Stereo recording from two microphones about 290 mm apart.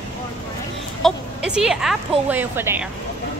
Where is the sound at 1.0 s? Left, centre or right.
Centre.